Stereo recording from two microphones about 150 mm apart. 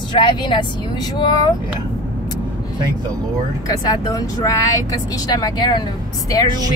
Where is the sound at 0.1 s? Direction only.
30° left (ahead or behind).